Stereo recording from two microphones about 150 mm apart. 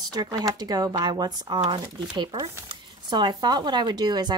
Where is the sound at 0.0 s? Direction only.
25° right (ahead or behind).